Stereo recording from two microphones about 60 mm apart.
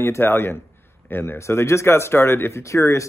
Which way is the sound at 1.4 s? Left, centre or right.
Left.